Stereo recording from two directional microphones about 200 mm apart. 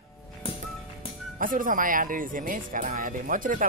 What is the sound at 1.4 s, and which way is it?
Speech, 40° right (ahead or behind).